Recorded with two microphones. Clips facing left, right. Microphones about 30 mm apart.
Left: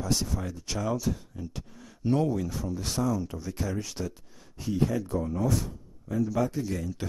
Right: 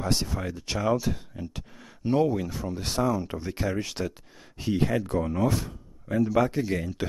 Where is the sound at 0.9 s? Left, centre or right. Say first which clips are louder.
Right 3 dB; right.